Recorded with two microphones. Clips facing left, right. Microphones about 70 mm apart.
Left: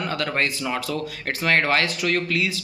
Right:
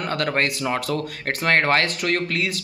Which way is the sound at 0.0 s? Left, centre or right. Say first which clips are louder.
Right 2 dB; right.